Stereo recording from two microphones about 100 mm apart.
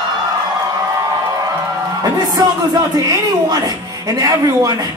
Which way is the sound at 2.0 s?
40° right (ahead or behind).